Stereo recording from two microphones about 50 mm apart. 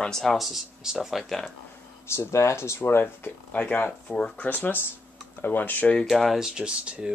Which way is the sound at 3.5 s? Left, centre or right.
Left.